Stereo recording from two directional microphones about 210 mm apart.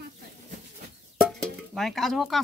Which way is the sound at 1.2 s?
Centre (ahead or behind).